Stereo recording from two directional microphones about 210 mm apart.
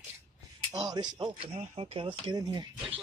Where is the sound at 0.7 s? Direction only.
20° right (ahead or behind).